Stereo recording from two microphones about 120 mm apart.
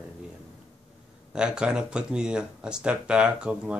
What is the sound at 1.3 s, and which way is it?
Speech, 5° right (ahead or behind).